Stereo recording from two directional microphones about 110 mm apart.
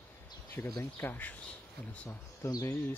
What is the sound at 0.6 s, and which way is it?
Speech, 20° left (ahead or behind).